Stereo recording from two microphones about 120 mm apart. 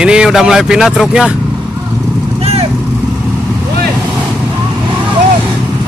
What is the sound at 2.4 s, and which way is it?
Vehicle, 60° right (ahead or behind).